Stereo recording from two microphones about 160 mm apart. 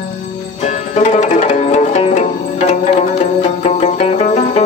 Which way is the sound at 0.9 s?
45° left (ahead or behind).